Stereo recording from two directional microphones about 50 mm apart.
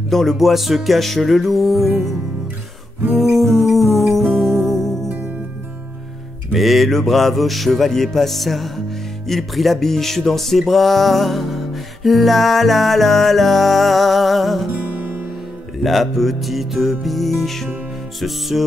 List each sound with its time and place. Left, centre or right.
0.1 s music: centre
3.2 s music: centre
6.5 s music: centre
14.8 s music: right
15.8 s music: centre